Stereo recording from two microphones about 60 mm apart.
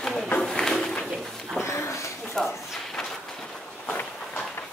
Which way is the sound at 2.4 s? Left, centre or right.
Centre.